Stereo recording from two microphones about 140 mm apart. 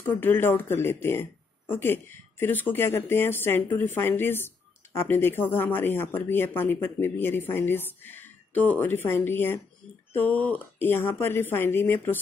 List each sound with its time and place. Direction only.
0.0 s speech: 15° left (ahead or behind)